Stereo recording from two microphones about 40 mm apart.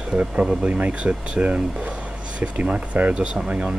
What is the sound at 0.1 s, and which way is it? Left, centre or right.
A man's voice, right.